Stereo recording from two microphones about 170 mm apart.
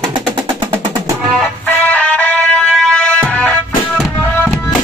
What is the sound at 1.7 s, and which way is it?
Music, 10° left (ahead or behind).